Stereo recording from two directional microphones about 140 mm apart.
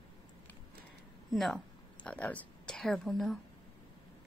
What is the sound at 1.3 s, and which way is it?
A woman's voice, centre (ahead or behind).